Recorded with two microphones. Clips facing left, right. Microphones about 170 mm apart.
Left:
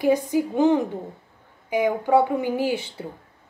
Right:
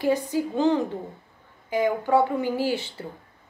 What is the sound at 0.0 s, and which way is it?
A woman's voice, 15° left (ahead or behind).